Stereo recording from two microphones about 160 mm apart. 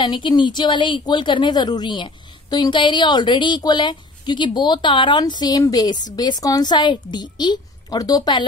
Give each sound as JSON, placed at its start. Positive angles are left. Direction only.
{"t": 0.0, "sound": "a woman's voice", "side_deg": 30}